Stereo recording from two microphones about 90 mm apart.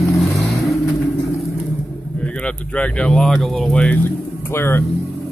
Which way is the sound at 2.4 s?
15° left (ahead or behind).